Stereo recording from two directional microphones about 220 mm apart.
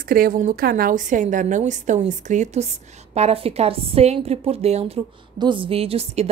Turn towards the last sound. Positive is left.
turn(degrees=-25)  # may be behind; listen again after turning